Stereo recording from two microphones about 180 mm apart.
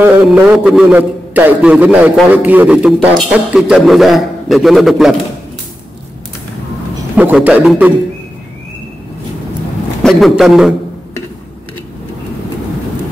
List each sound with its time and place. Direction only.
0.0 s a man's voice: 5° right (ahead or behind)
7.2 s a man's voice: 10° right (ahead or behind)
10.0 s a man's voice: centre (ahead or behind)